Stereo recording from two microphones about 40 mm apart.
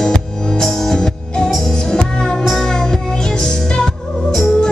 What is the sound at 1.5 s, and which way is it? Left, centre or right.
Music, centre.